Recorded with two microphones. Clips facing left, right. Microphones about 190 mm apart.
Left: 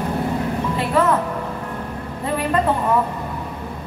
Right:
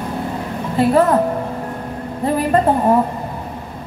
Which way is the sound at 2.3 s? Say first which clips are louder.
Right 4 dB; 40° right (ahead or behind).